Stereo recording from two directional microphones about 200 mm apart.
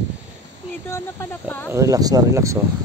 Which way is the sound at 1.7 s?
15° right (ahead or behind).